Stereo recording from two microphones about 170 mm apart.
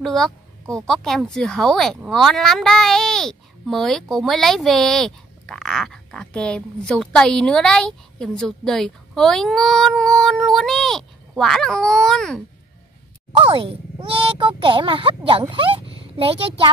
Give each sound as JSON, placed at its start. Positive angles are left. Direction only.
{"t": 0.0, "sound": "speech", "side_deg": 0}
{"t": 13.4, "sound": "speech", "side_deg": -30}